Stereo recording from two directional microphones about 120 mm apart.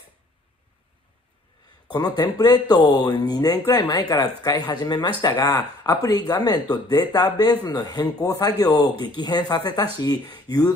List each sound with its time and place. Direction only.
1.9 s speech: 35° left (ahead or behind)